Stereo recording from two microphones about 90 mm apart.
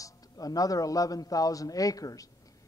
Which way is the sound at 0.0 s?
40° left (ahead or behind).